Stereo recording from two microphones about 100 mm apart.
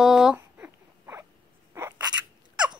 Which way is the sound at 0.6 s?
25° right (ahead or behind).